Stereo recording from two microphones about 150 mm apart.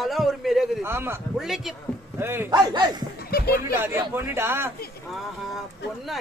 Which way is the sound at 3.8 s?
15° right (ahead or behind).